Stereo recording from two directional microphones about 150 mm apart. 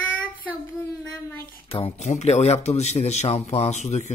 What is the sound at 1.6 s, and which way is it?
A man's voice, 40° left (ahead or behind).